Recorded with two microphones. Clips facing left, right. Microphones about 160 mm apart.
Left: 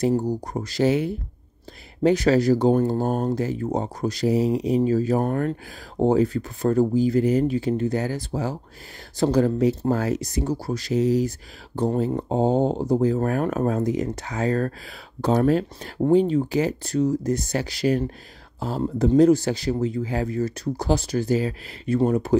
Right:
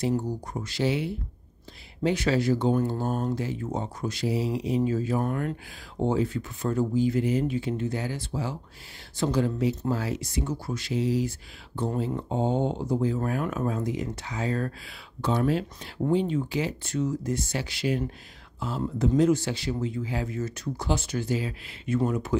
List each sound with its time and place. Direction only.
0.0 s speech: 35° left (ahead or behind)